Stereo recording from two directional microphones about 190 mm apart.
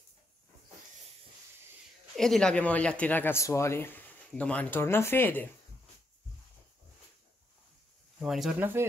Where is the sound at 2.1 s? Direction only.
Centre (ahead or behind).